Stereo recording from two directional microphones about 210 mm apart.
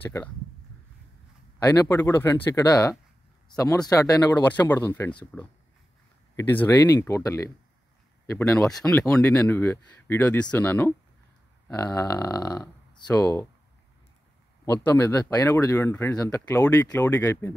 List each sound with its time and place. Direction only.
0.0 s speech: 15° left (ahead or behind)
1.6 s speech: 15° left (ahead or behind)
15.0 s speech: 10° left (ahead or behind)